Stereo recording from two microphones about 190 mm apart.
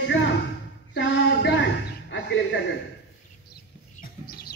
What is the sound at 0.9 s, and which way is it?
Female singing, 65° left (ahead or behind).